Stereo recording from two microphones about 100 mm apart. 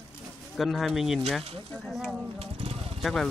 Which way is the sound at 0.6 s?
Centre (ahead or behind).